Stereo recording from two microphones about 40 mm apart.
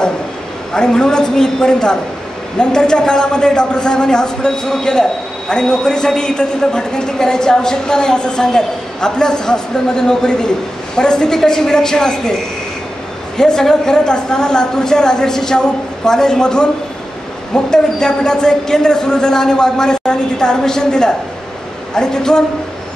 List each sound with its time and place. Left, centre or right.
0.7 s a man's voice: centre
13.4 s a man's voice: centre
17.6 s a man's voice: centre